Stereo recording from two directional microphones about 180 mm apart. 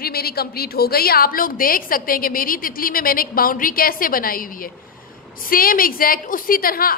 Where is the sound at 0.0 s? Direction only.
60° left (ahead or behind).